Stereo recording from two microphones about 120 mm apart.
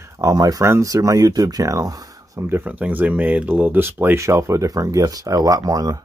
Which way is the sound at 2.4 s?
15° right (ahead or behind).